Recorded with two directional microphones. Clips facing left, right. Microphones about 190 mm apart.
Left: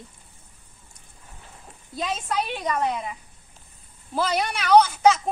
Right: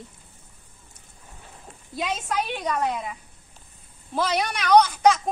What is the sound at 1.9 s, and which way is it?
A woman's voice, centre (ahead or behind).